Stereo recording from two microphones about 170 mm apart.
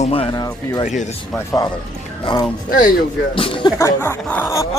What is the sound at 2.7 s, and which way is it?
Speech, 50° left (ahead or behind).